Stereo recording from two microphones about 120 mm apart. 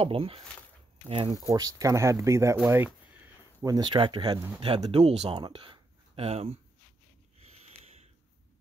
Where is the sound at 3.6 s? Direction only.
35° right (ahead or behind).